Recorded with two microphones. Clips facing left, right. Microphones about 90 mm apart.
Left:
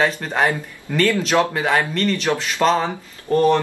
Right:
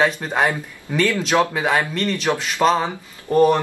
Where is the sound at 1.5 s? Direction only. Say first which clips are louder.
Left 1 dB; 5° right (ahead or behind).